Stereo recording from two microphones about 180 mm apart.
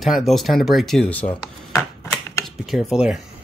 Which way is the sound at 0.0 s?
Centre (ahead or behind).